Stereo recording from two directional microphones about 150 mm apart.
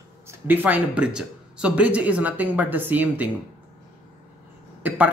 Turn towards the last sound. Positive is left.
turn(degrees=-10)  # may be behind; listen again after turning